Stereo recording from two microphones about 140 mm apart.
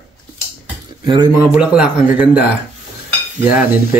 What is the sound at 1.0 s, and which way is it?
Speech, 35° right (ahead or behind).